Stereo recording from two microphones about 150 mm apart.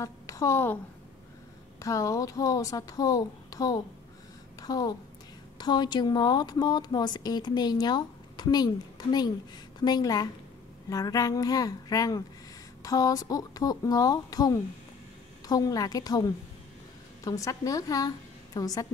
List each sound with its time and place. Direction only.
0.0 s a woman's voice: 20° left (ahead or behind)
1.8 s a woman's voice: 20° left (ahead or behind)